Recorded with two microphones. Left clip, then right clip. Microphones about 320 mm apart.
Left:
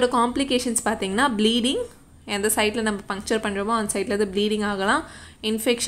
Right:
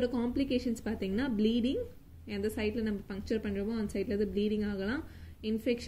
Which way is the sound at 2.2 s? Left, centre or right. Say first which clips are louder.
Left 12 dB; left.